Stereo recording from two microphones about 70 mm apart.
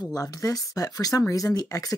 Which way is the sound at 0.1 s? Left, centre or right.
Left.